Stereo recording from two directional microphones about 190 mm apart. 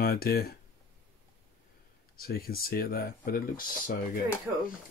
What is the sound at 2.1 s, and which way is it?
Speech, 55° left (ahead or behind).